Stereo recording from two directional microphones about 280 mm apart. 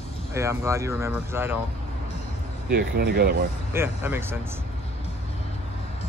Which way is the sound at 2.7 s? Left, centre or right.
Right.